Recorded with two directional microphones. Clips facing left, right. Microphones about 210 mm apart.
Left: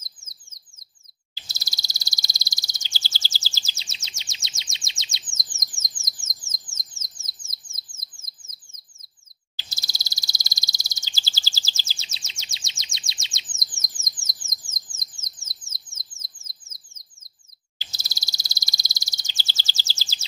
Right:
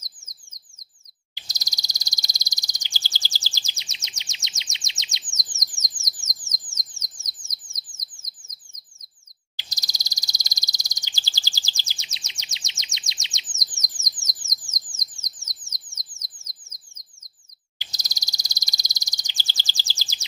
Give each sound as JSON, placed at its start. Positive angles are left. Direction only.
{"t": 1.3, "sound": "bird", "side_deg": -15}
{"t": 9.6, "sound": "a sound", "side_deg": -15}
{"t": 14.7, "sound": "bird", "side_deg": -15}
{"t": 17.7, "sound": "bird", "side_deg": -15}